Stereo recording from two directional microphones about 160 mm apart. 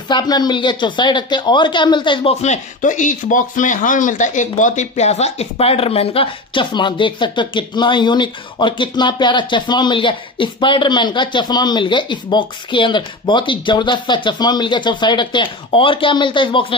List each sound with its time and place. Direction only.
0.1 s speech: 25° left (ahead or behind)
2.4 s speech: 50° left (ahead or behind); by 16.6 s 30° left (ahead or behind)